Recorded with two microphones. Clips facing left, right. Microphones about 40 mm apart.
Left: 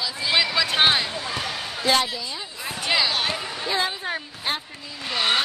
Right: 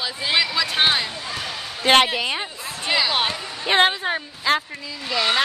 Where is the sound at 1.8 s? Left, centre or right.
Right.